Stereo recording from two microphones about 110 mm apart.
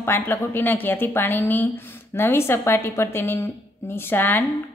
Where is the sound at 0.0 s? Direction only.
20° left (ahead or behind).